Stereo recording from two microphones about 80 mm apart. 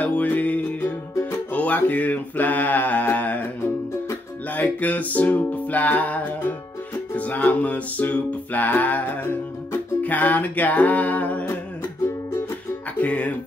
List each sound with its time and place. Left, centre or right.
0.0 s music: centre
4.6 s music: centre
13.0 s speech: centre